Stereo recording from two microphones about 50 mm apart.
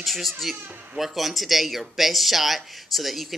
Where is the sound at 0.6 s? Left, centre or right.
Right.